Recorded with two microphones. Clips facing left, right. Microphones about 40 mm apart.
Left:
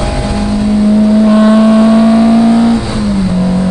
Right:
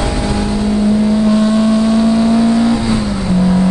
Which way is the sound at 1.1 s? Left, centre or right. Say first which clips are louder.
Left 5 dB; centre.